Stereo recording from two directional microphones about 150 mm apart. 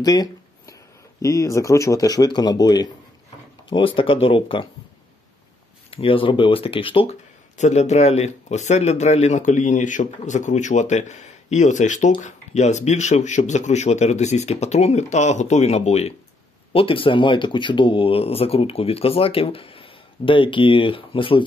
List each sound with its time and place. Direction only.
0.0 s a sound: 25° left (ahead or behind)
1.2 s speech: 20° left (ahead or behind)
5.9 s speech: 35° left (ahead or behind)
7.5 s speech: 50° left (ahead or behind)